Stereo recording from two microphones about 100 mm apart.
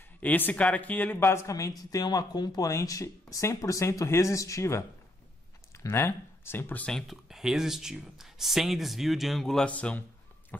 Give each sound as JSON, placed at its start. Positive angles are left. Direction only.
{"t": 0.2, "sound": "speech", "side_deg": 15}
{"t": 6.9, "sound": "speech", "side_deg": 0}